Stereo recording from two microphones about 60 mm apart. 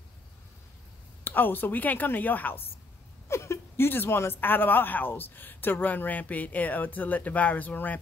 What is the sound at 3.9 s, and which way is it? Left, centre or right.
Speech, left.